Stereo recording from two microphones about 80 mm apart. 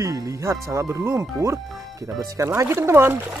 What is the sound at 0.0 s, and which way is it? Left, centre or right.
Speech, right.